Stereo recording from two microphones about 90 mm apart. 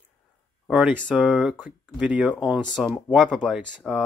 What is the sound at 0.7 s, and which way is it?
Speech, 15° right (ahead or behind).